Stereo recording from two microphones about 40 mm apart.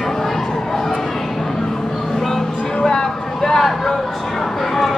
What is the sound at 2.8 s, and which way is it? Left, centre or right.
Speech, centre.